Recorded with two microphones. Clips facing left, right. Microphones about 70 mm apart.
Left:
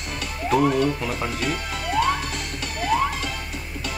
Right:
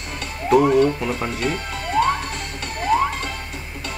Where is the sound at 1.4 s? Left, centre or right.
Right.